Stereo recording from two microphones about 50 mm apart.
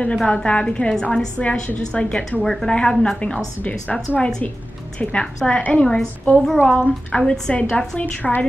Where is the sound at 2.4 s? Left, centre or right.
Centre.